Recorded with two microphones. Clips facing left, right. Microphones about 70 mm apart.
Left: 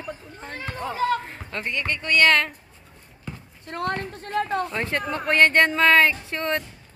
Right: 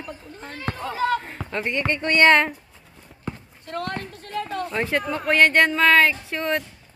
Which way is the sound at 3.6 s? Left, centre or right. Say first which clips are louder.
Left 2 dB; left.